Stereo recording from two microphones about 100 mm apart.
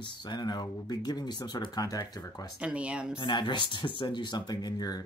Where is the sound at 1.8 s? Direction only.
40° left (ahead or behind).